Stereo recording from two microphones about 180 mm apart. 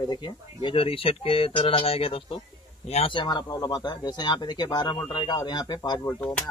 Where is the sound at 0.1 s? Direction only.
25° left (ahead or behind).